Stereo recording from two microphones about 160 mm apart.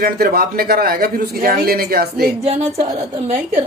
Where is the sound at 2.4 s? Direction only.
40° right (ahead or behind).